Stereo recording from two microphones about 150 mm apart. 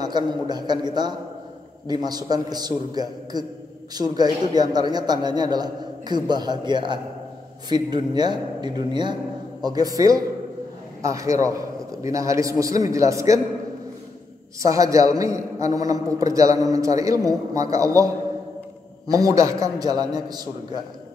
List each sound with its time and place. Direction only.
0.0 s a man's voice: 30° right (ahead or behind)
14.6 s a man's voice: 20° right (ahead or behind)